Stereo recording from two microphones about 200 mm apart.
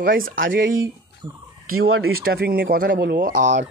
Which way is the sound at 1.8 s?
90° right.